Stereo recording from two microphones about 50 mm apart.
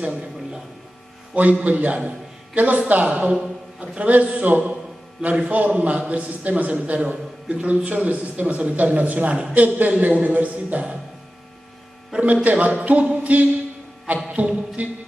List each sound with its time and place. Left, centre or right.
1.3 s a man's voice: right
2.0 s a sound: right
3.1 s a man's voice: right
3.3 s a sound: centre
4.1 s speech: right
5.2 s a man's voice: right
12.1 s a man's voice: right
14.0 s music: right